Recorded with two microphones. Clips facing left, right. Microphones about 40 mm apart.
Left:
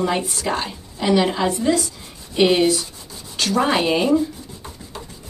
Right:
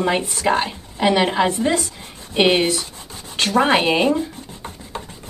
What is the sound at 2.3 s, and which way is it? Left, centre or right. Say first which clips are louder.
Rub: even; right.